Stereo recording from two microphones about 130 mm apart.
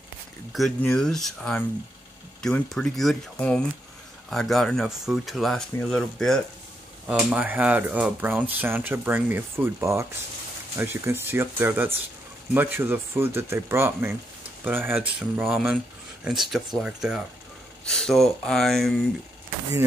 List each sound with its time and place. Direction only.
0.5 s speech: centre (ahead or behind)
7.1 s speech: 10° right (ahead or behind)
15.0 s speech: 5° right (ahead or behind)